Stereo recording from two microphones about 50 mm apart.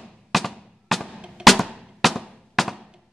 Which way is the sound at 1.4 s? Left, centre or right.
Centre.